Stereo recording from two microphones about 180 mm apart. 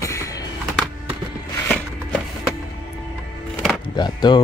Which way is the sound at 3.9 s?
25° left (ahead or behind).